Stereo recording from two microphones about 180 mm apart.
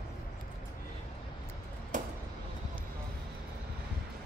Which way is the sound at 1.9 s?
45° right (ahead or behind).